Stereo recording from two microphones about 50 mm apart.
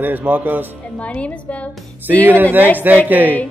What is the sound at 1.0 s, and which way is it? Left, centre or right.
Speech, left.